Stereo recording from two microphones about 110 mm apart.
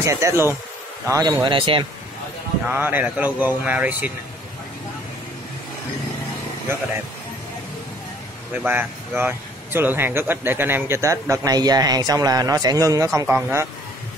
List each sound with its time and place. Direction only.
0.0 s speech: 25° right (ahead or behind)
1.2 s speech: 50° right (ahead or behind)
2.7 s speech: 15° right (ahead or behind)
8.6 s speech: 15° right (ahead or behind)